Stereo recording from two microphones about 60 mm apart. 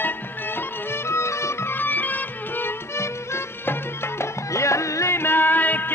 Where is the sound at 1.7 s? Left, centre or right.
Left.